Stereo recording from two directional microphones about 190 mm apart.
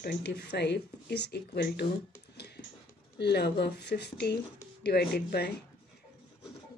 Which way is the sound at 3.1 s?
60° left (ahead or behind).